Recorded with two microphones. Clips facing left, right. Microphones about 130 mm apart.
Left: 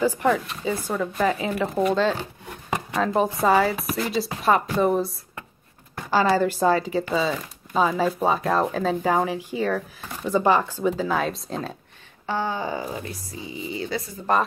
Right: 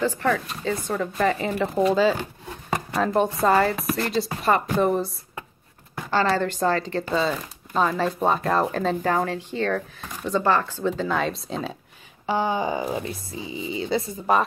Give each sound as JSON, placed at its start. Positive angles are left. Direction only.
{"t": 0.0, "sound": "speech", "side_deg": 15}
{"t": 12.3, "sound": "speech", "side_deg": -15}